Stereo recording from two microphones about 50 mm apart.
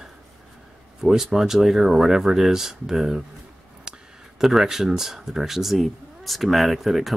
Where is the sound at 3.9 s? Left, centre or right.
Centre.